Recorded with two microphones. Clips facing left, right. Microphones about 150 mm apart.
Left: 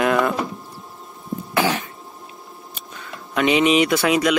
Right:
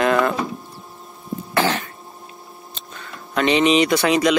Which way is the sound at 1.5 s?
10° left (ahead or behind).